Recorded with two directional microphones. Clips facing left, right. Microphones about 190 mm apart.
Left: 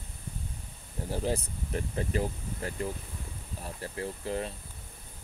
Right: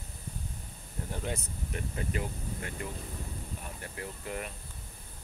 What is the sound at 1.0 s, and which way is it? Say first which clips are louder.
Speech: left 6 dB; 35° left (ahead or behind).